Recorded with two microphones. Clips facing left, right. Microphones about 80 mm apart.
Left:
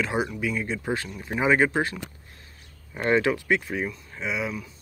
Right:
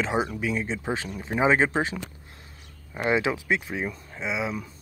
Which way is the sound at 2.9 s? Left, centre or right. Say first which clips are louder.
Left 2 dB; centre.